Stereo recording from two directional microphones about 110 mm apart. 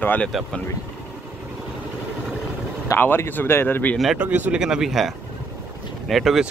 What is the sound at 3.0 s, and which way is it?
Speech, 15° left (ahead or behind).